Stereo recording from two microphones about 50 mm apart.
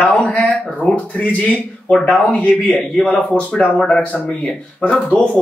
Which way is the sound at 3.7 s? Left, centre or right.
Centre.